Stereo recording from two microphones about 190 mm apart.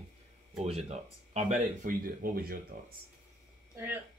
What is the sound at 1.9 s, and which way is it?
Speech, 50° right (ahead or behind).